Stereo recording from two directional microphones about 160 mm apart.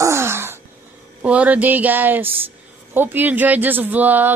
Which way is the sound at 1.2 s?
10° right (ahead or behind).